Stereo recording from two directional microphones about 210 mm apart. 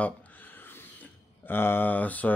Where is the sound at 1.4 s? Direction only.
10° left (ahead or behind).